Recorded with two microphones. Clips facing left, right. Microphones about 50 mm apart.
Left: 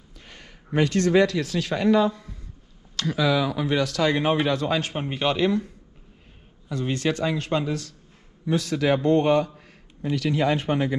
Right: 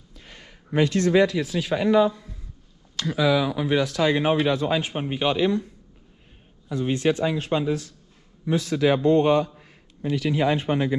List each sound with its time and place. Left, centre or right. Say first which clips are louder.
0.7 s speech: right 1 dB; left
1.1 s a man's voice: even; centre
6.7 s a man's voice: right 3 dB; centre
8.5 s speech: right 1 dB; right
9.0 s speech: even; left
10.1 s speech: even; right
10.6 s speech: right 1 dB; left